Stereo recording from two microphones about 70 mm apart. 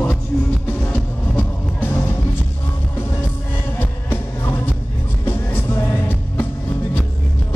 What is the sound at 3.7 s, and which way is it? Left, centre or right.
Music, left.